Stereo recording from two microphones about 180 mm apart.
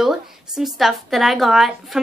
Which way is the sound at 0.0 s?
Centre (ahead or behind).